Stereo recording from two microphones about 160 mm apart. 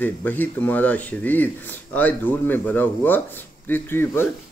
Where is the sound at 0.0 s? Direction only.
10° left (ahead or behind).